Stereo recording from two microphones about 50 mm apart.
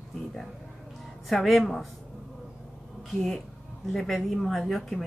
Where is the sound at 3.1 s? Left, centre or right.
Centre.